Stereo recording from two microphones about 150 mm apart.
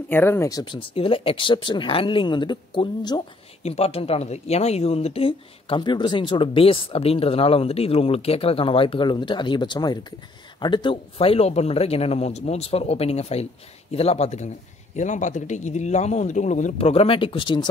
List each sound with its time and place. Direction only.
0.1 s speech: 15° left (ahead or behind)
0.7 s speech: 35° left (ahead or behind)
3.6 s speech: 45° left (ahead or behind)
16.7 s speech: 40° left (ahead or behind)